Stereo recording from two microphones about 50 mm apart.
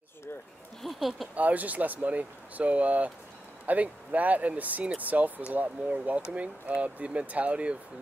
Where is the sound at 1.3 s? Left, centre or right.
Right.